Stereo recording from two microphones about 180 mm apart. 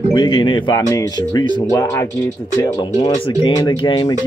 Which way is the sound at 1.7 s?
15° left (ahead or behind).